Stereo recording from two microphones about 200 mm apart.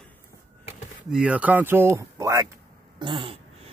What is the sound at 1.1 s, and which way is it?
Speech, 5° right (ahead or behind).